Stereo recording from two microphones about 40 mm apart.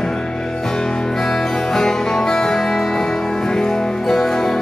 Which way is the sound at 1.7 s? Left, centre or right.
Centre.